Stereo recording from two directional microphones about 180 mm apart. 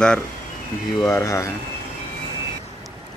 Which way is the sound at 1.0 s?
15° left (ahead or behind).